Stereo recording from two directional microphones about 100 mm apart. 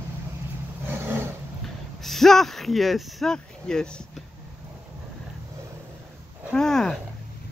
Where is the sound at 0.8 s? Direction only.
25° right (ahead or behind).